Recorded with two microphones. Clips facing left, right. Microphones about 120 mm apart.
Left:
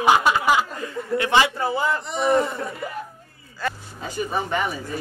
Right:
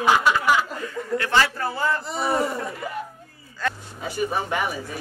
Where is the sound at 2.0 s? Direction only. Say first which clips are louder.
Left 3 dB; 5° right (ahead or behind).